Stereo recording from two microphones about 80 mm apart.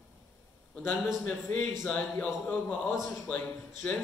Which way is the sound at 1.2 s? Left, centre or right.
Left.